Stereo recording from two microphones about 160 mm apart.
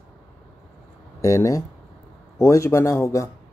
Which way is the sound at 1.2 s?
20° left (ahead or behind).